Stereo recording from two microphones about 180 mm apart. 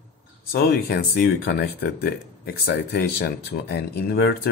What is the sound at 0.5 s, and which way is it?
Speech, 60° left (ahead or behind).